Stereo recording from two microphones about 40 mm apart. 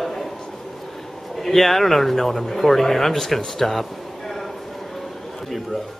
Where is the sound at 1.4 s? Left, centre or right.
Centre.